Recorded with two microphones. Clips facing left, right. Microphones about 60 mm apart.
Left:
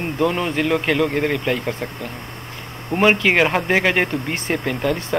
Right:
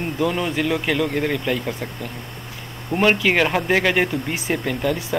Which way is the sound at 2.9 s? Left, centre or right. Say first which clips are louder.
Left 2 dB; centre.